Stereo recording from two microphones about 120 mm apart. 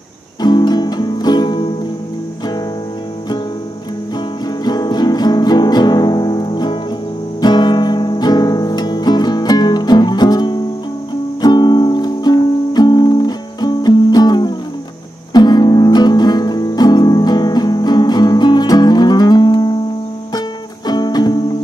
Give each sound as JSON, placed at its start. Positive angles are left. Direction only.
{"t": 0.4, "sound": "music", "side_deg": 35}
{"t": 4.6, "sound": "music", "side_deg": 35}